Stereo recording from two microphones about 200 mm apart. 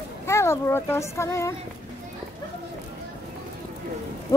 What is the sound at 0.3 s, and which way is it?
A child's voice, 15° left (ahead or behind).